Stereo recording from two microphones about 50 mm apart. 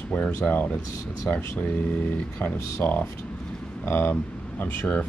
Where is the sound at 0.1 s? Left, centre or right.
Left.